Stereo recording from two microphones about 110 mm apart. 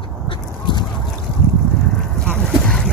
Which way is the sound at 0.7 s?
40° left (ahead or behind).